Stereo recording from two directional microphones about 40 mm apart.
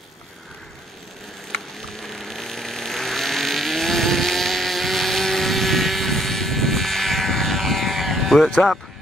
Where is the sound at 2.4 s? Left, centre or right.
Centre.